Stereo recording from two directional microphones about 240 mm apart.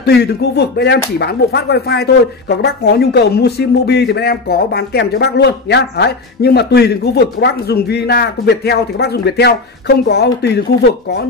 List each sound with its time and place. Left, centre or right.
0.0 s speech: left